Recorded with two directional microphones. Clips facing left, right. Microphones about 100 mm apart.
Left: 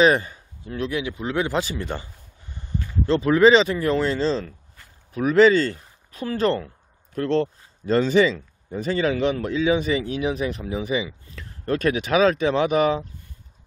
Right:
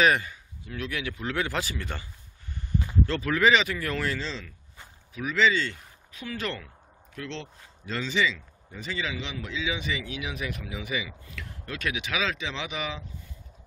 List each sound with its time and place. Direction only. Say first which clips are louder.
0.0 s speech: left 5 dB; 30° left (ahead or behind)
3.1 s speech: left 9 dB; 25° left (ahead or behind)
7.2 s speech: left 15 dB; 45° left (ahead or behind)